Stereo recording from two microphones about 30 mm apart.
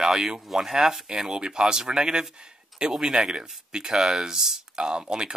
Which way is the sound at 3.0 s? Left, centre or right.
Right.